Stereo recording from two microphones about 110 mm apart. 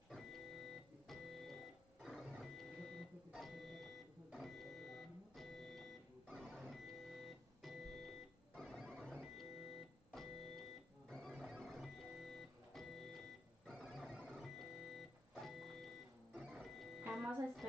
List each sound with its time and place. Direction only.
0.1 s organ: centre (ahead or behind)
2.0 s printer: centre (ahead or behind)
7.6 s a sound: centre (ahead or behind)
10.1 s keyboard: centre (ahead or behind)
11.1 s printer: 5° left (ahead or behind)